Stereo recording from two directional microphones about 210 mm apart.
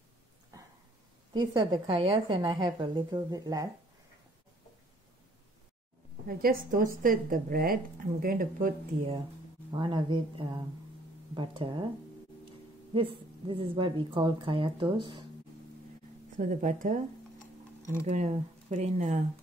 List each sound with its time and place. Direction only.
0.5 s a sound: 15° right (ahead or behind)
1.3 s a woman's voice: 20° right (ahead or behind)
6.2 s a woman's voice: 40° right (ahead or behind)
9.7 s a woman's voice: 20° right (ahead or behind)
12.9 s a woman's voice: 25° right (ahead or behind)
16.3 s speech: 40° right (ahead or behind)
18.0 s speech: 30° right (ahead or behind)